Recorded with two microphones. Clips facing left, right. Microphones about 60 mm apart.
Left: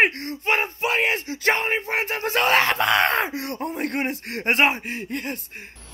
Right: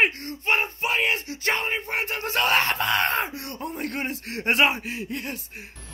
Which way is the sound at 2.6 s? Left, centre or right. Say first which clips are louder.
Left 4 dB; left.